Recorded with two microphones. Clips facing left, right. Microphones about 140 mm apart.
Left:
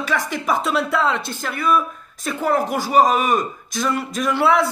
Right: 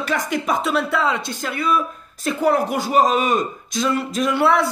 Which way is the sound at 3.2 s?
25° right (ahead or behind).